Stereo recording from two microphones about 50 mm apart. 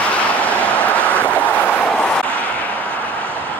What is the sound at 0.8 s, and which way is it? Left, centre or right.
Vehicle, left.